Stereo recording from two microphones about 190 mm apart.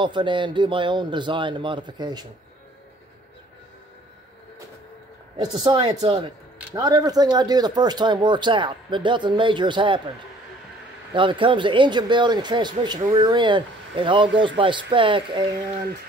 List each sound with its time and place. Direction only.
0.0 s speech: 25° right (ahead or behind)
5.4 s speech: 20° right (ahead or behind)
11.1 s speech: 25° right (ahead or behind)